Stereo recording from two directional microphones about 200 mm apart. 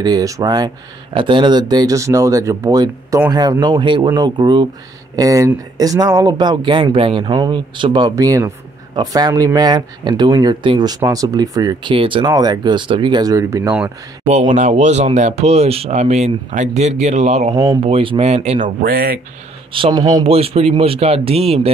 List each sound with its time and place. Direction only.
0.0 s speech: 20° right (ahead or behind)
14.2 s speech: 30° right (ahead or behind)
18.8 s speech: 50° right (ahead or behind)
19.7 s speech: 25° right (ahead or behind)
20.2 s speech: 30° right (ahead or behind)